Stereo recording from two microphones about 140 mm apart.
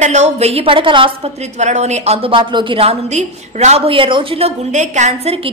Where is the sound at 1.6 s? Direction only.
55° right (ahead or behind).